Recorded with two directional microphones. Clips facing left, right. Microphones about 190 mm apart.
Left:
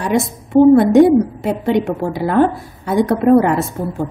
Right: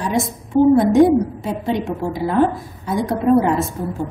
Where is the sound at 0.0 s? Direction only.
65° left (ahead or behind).